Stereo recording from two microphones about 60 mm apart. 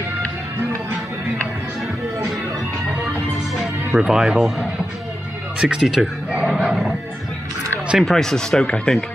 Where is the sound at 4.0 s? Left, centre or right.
Centre.